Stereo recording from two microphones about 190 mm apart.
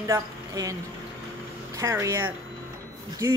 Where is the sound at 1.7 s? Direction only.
15° right (ahead or behind).